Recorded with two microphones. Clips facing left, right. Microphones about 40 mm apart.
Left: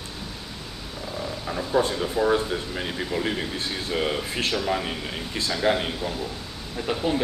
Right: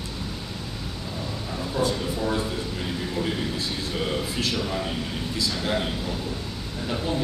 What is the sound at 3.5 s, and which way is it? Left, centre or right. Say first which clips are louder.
A man's voice: left 1 dB; left.